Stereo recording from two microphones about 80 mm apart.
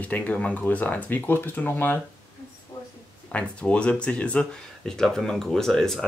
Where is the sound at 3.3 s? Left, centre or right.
Centre.